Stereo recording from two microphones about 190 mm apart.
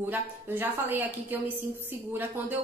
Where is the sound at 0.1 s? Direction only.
10° right (ahead or behind).